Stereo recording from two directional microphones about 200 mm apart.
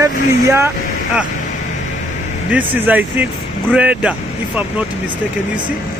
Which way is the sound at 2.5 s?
10° right (ahead or behind).